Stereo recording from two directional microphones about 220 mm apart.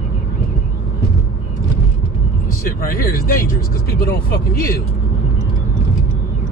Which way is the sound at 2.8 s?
40° left (ahead or behind).